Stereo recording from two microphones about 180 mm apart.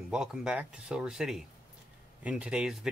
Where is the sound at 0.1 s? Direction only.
5° right (ahead or behind).